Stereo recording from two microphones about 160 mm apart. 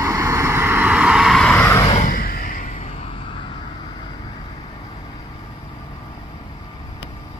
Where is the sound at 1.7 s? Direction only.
20° left (ahead or behind).